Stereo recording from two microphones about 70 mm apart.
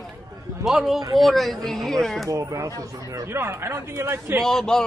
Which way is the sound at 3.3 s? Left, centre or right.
Right.